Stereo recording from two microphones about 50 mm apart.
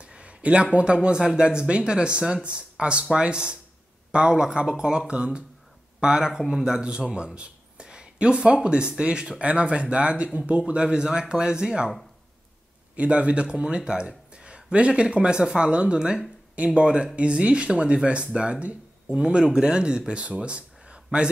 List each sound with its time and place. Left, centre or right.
0.0 s a sound: right
0.7 s speech: right
12.9 s speech: right